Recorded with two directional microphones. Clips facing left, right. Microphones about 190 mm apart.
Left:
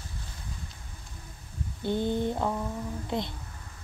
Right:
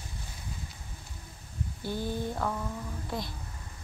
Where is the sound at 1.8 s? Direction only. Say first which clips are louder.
Left 6 dB; 20° left (ahead or behind).